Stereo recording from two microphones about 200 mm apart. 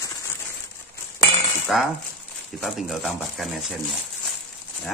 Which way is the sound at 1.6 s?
Centre (ahead or behind).